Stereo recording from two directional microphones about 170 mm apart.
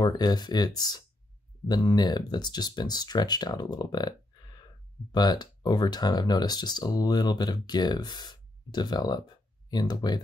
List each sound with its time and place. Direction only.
0.0 s speech: 20° left (ahead or behind)